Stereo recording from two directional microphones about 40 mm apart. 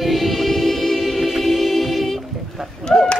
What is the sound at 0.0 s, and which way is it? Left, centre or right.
Choir, centre.